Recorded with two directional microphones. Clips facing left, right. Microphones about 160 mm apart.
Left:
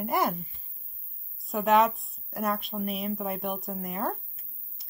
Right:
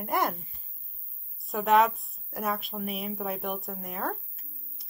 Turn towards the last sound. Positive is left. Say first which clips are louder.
# left 2 dB
turn(degrees=0)  # may be behind; listen again after turning